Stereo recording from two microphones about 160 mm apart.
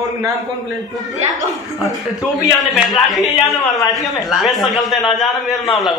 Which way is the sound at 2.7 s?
Centre (ahead or behind).